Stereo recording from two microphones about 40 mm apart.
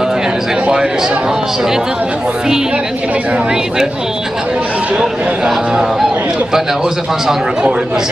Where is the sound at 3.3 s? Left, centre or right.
Right.